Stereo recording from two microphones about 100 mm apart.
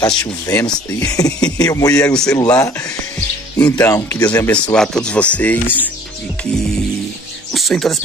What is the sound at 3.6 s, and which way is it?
Speech, 15° left (ahead or behind).